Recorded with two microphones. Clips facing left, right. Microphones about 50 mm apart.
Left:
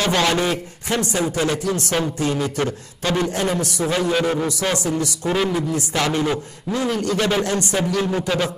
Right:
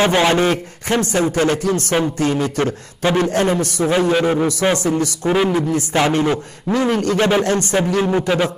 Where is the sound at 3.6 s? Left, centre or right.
Right.